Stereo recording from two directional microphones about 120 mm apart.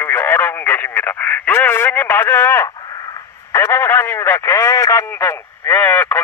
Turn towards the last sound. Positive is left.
turn(degrees=15)  # may be behind; listen again after turning